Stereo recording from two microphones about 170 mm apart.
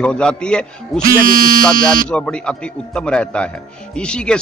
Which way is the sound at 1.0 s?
55° right (ahead or behind).